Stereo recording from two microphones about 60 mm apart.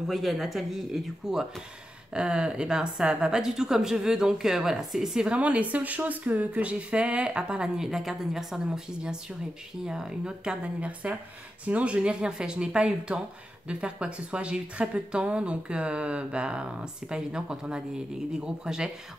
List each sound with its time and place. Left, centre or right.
0.1 s speech: centre
2.1 s a woman's voice: centre